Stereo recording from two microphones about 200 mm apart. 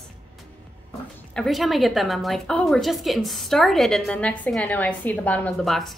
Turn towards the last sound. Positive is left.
turn(degrees=0)  # may be behind; listen again after turning